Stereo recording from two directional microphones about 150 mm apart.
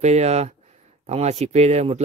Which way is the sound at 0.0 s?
45° right (ahead or behind).